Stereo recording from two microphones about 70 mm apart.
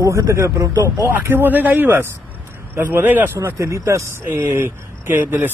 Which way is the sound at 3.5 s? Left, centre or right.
Right.